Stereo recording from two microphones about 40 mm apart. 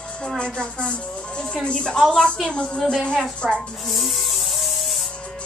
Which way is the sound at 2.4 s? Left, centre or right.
Left.